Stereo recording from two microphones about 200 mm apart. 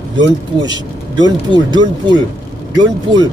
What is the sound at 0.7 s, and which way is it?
Speech, 20° right (ahead or behind).